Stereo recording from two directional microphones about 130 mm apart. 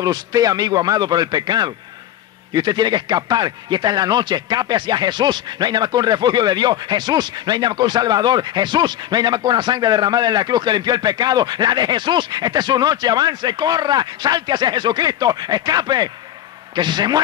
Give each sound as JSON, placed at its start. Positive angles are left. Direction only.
{"t": 0.0, "sound": "speech", "side_deg": -30}